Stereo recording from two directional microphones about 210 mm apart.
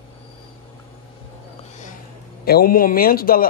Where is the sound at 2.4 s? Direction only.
45° left (ahead or behind).